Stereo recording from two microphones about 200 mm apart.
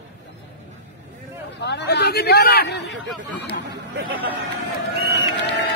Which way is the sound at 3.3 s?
60° left (ahead or behind).